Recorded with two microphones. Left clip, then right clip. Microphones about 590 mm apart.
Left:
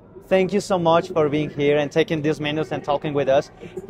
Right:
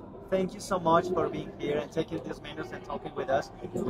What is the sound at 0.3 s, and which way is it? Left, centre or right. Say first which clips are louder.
Speech: left 11 dB; left.